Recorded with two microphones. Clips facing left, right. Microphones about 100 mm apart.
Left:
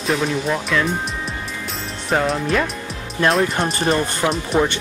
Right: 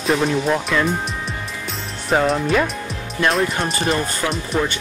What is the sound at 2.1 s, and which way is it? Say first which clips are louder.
Speech: right 2 dB; centre (ahead or behind).